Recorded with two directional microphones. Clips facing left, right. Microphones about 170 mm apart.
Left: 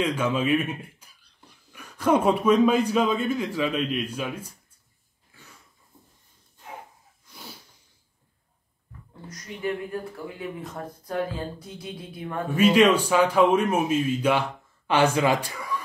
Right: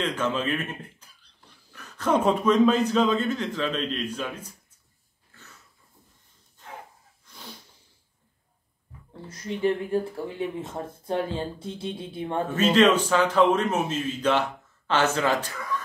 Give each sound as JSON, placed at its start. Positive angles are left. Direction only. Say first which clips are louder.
{"t": 0.0, "sound": "speech", "louder": "left 2 dB", "side_deg": 10}
{"t": 5.3, "sound": "a sound", "louder": "even", "side_deg": 10}
{"t": 9.1, "sound": "speech", "louder": "right 7 dB", "side_deg": -30}
{"t": 12.5, "sound": "a man's voice", "louder": "left 2 dB", "side_deg": 10}